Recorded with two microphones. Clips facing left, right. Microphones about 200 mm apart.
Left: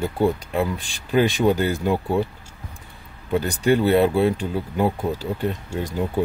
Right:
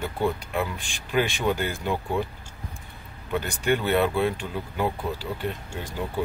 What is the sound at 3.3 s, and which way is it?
Speech, 35° left (ahead or behind).